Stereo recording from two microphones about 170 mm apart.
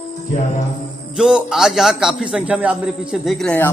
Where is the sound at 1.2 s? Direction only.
5° right (ahead or behind).